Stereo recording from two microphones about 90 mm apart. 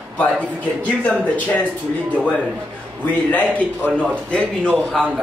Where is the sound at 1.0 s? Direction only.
15° left (ahead or behind).